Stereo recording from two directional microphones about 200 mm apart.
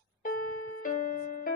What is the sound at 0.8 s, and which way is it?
Music, 40° left (ahead or behind).